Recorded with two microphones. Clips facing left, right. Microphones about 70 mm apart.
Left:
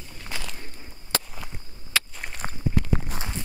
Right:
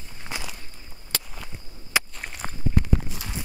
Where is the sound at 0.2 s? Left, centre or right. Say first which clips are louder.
Right 1 dB; centre.